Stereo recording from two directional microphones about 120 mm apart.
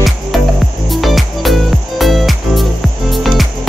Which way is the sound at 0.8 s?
Centre (ahead or behind).